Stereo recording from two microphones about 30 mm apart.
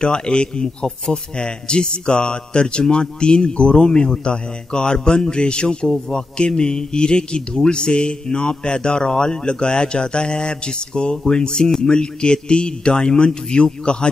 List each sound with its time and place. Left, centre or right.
0.0 s speech: left